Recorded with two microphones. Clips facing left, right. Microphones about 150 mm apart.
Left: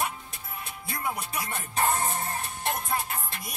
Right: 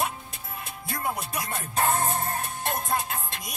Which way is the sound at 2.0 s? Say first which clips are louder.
Right 3 dB; 55° right (ahead or behind).